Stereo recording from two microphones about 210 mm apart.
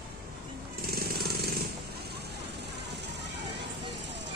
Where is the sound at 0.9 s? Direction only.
45° right (ahead or behind).